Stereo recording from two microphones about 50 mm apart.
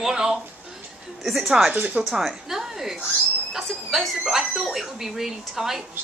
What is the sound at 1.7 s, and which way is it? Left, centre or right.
Speech, right.